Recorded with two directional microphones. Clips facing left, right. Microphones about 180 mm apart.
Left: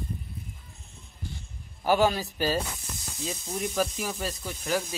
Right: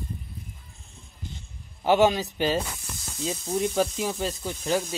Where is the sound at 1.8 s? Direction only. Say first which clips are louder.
Right 3 dB; 20° right (ahead or behind).